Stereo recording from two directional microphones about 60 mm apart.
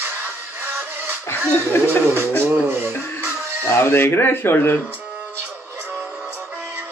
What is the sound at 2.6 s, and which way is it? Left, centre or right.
Music, right.